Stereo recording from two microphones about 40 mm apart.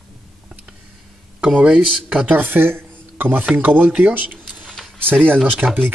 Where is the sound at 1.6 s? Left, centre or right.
Right.